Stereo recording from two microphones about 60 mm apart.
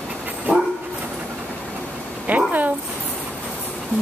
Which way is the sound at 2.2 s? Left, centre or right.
Right.